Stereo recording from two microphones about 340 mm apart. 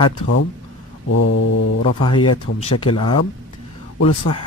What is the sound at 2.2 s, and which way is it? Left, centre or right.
Speech, left.